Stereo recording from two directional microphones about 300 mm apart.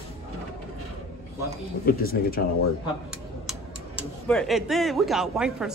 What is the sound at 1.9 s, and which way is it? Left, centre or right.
Speech, left.